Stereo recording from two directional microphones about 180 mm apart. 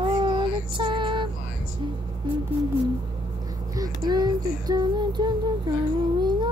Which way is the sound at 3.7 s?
20° right (ahead or behind).